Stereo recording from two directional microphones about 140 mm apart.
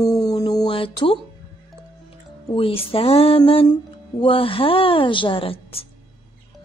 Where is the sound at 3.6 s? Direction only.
35° left (ahead or behind).